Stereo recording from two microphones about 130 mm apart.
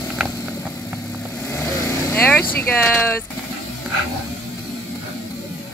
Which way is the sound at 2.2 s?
10° left (ahead or behind).